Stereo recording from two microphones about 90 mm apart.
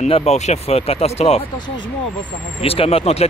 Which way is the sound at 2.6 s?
90° left.